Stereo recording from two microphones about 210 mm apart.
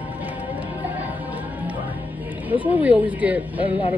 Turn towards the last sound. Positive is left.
turn(degrees=25)  # may be behind; listen again after turning